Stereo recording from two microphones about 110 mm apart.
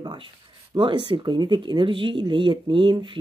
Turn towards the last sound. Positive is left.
turn(degrees=-45)  # may be behind; listen again after turning